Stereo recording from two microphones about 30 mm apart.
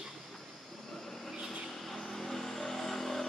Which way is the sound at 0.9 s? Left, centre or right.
Centre.